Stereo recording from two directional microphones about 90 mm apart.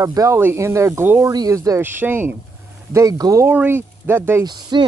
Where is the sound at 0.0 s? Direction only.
40° right (ahead or behind).